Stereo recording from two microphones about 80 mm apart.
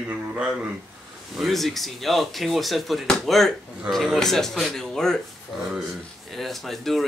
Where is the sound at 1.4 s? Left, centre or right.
Centre.